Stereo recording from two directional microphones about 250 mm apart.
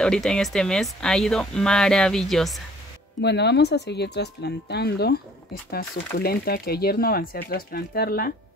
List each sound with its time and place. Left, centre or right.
0.0 s speech: centre
3.2 s speech: left
6.1 s speech: left